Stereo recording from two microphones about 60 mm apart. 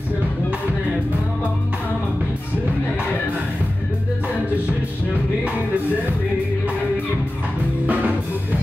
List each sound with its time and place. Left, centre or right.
7.8 s music: right